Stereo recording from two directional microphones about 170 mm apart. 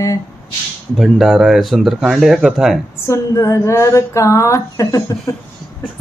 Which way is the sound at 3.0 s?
15° left (ahead or behind).